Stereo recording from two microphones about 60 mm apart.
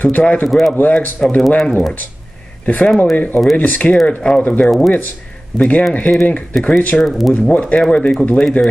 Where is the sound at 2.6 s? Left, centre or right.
Left.